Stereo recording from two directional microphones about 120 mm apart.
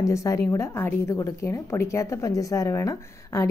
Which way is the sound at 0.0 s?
25° left (ahead or behind).